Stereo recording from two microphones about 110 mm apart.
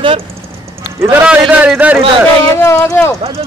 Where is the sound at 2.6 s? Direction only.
25° left (ahead or behind).